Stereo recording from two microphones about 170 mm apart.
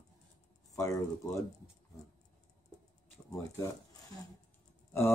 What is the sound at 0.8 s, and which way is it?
Speech, 20° left (ahead or behind).